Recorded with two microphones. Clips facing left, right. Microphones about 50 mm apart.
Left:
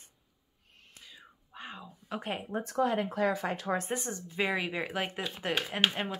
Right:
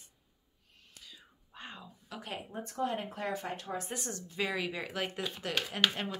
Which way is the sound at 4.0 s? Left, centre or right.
Left.